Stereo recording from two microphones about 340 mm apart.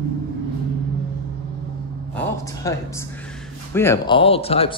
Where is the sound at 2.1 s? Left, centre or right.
Centre.